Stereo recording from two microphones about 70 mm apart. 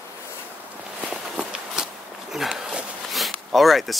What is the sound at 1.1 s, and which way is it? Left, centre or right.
Walk, centre.